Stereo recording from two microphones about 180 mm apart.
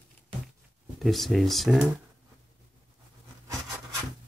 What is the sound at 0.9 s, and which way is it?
Speech, centre (ahead or behind).